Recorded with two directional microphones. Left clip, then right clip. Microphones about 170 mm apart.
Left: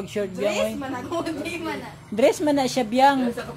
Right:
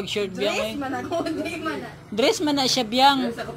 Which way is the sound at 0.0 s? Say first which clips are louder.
Even; 30° left (ahead or behind).